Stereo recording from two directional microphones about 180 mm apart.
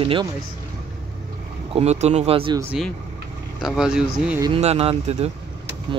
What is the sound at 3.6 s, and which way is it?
Speech, 5° right (ahead or behind).